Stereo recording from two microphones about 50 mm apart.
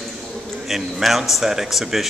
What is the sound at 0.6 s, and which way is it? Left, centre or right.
A woman's voice, centre.